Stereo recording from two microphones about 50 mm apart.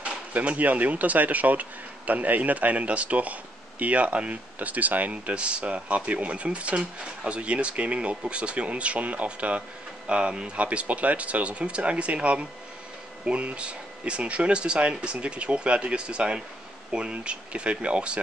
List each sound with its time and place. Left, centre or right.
0.0 s speech: right